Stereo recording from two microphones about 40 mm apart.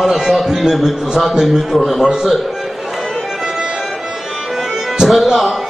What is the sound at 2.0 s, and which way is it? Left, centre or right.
Speech, centre.